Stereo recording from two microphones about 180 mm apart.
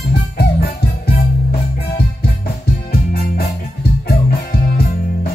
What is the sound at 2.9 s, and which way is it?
Music, 55° left (ahead or behind).